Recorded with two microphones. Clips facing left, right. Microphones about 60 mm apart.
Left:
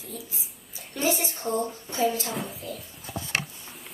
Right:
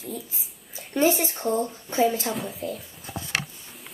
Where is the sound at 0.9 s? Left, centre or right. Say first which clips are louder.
Right 5 dB; right.